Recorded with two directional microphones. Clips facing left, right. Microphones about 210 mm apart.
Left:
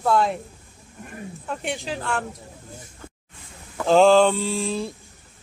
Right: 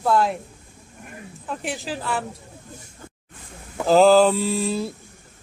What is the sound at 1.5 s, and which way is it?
Speech, centre (ahead or behind).